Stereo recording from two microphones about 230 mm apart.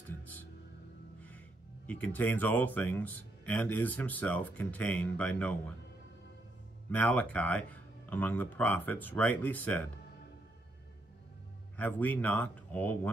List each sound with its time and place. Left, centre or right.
1.9 s speech: centre
6.9 s speech: centre
11.7 s speech: centre